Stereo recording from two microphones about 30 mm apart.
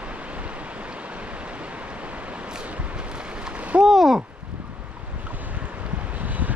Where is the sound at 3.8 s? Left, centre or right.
Centre.